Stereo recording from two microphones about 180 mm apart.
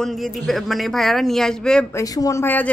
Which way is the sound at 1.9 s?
20° left (ahead or behind).